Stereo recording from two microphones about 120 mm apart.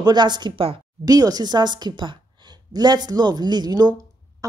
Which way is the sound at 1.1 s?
35° right (ahead or behind).